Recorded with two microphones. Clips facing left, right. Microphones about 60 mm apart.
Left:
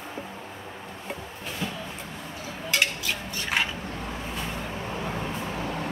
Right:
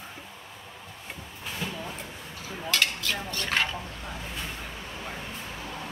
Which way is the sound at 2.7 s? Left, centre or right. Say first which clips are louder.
Left 1 dB; centre.